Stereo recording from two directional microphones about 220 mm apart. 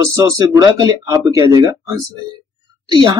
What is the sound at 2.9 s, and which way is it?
Speech, 20° right (ahead or behind).